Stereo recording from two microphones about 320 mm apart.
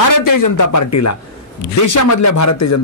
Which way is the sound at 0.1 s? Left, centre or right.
Left.